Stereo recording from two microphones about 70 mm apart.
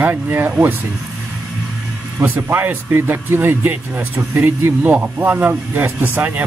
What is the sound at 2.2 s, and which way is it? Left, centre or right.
Speech, right.